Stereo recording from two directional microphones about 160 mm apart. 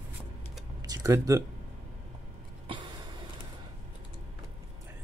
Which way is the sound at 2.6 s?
30° right (ahead or behind).